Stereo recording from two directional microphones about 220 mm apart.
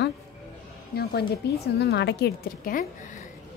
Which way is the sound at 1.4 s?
50° left (ahead or behind).